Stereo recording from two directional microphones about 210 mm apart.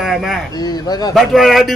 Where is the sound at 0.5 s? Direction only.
20° left (ahead or behind).